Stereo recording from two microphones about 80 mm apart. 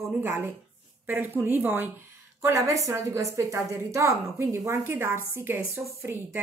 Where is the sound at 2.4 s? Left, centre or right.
Right.